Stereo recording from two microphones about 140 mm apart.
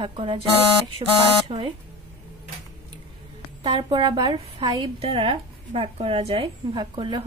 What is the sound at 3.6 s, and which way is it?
Speech, 35° right (ahead or behind).